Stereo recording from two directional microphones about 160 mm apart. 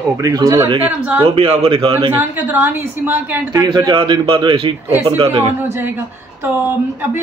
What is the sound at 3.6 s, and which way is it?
A man's voice, 25° right (ahead or behind).